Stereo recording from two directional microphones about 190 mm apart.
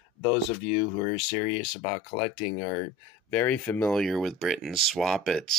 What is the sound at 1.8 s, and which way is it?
Speech, 35° left (ahead or behind).